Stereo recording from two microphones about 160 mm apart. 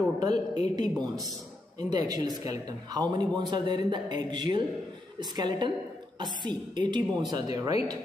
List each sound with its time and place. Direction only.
0.2 s speech: 25° right (ahead or behind)